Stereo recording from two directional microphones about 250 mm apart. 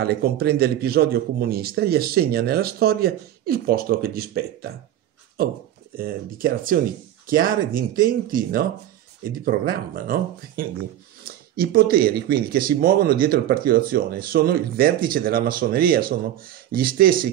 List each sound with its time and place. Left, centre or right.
0.0 s speech: right